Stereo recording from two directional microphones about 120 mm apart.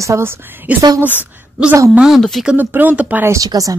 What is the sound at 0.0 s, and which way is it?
A woman's voice, 25° right (ahead or behind).